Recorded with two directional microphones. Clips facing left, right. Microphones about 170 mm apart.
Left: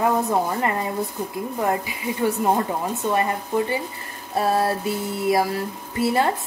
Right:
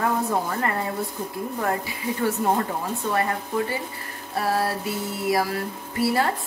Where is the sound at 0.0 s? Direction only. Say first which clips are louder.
Left 3 dB; 15° left (ahead or behind).